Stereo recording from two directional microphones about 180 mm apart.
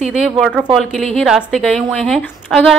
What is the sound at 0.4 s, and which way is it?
A woman's voice, 5° right (ahead or behind).